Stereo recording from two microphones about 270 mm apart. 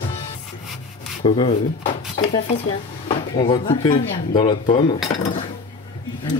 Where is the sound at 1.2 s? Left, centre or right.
Centre.